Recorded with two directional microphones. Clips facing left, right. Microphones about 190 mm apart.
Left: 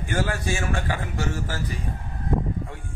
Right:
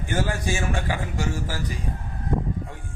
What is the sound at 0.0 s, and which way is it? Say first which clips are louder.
A man's voice: even; 15° right (ahead or behind).